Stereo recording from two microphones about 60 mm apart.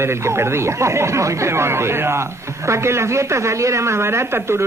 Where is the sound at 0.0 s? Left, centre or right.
Right.